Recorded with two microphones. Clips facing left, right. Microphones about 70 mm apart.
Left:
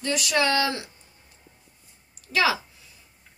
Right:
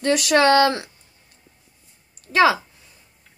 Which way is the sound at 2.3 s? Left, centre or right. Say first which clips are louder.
Right 7 dB; right.